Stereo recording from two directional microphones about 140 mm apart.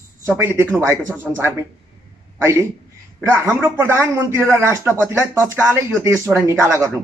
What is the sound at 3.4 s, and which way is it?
Speech, 15° right (ahead or behind).